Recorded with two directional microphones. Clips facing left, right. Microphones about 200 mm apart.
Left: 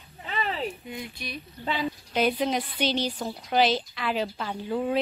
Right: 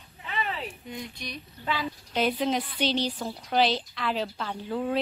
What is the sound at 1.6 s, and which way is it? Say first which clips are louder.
Speech: left 2 dB; 25° left (ahead or behind).